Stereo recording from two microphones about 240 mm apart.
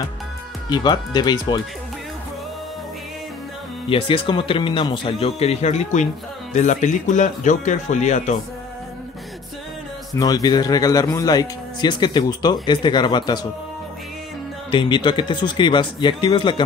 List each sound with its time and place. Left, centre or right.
0.7 s speech: centre
3.9 s speech: left
10.1 s speech: centre
14.7 s speech: left